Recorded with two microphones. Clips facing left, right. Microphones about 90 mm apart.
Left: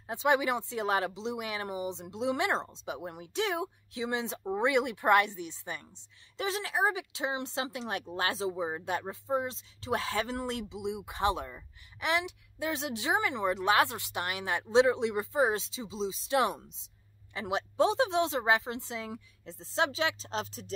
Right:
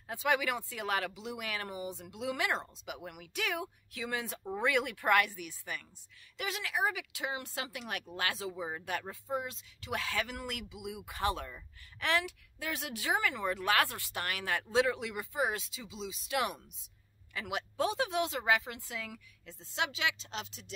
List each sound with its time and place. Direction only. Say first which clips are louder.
0.1 s speech: left 4 dB; 25° left (ahead or behind)